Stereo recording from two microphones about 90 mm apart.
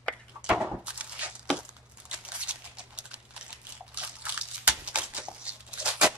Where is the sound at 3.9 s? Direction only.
15° right (ahead or behind).